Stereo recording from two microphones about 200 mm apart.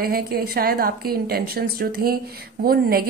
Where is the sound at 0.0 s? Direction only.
50° right (ahead or behind).